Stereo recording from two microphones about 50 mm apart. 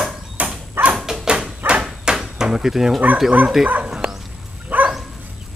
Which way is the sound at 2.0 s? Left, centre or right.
Centre.